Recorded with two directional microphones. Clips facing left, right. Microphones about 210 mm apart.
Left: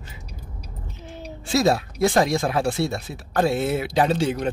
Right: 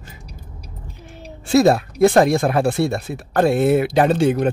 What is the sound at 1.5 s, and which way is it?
Speech, 55° right (ahead or behind).